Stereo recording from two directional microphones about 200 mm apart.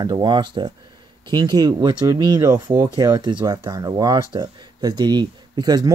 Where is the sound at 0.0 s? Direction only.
20° right (ahead or behind).